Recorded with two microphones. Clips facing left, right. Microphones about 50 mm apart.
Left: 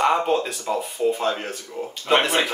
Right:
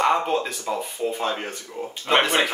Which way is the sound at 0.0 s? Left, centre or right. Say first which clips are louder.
Left 1 dB; centre.